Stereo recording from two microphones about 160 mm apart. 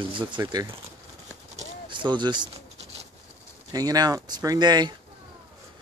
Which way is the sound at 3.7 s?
25° right (ahead or behind).